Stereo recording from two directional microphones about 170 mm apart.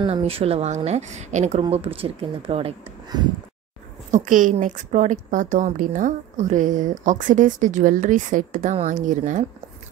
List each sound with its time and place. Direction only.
0.0 s speech: 35° right (ahead or behind)
4.1 s a woman's voice: 50° right (ahead or behind)